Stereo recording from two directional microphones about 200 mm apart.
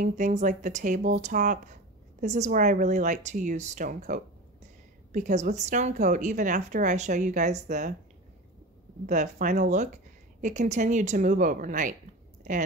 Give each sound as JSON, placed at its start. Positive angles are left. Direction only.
{"t": 0.0, "sound": "a woman's voice", "side_deg": -35}
{"t": 9.0, "sound": "a woman's voice", "side_deg": -40}